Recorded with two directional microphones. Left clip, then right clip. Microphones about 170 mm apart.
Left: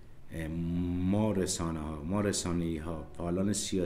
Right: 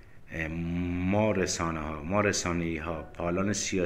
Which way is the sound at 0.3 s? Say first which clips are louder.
Right 4 dB; 35° left (ahead or behind).